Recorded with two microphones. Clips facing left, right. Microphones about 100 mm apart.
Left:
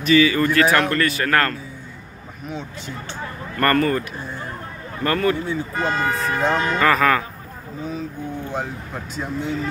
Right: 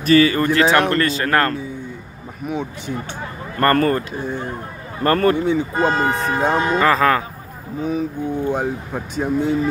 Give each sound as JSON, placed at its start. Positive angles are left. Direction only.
{"t": 0.0, "sound": "speech", "side_deg": -40}
{"t": 0.4, "sound": "speech", "side_deg": -20}
{"t": 3.5, "sound": "speech", "side_deg": -30}
{"t": 5.0, "sound": "speech", "side_deg": -40}
{"t": 5.5, "sound": "speech", "side_deg": -20}
{"t": 7.8, "sound": "speech", "side_deg": -15}
{"t": 9.1, "sound": "speech", "side_deg": -55}